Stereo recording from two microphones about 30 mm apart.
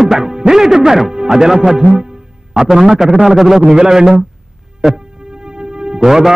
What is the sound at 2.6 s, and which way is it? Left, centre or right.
A man's voice, centre.